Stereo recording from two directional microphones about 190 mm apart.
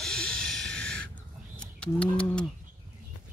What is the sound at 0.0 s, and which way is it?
Snort, 5° left (ahead or behind).